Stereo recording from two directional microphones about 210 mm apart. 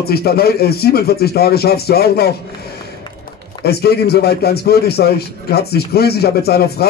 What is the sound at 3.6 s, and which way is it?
Speech, 50° left (ahead or behind).